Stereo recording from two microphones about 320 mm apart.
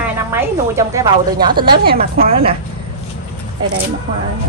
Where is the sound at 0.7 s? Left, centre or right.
Centre.